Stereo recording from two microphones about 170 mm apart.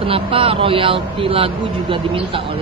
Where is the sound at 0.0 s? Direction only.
30° right (ahead or behind).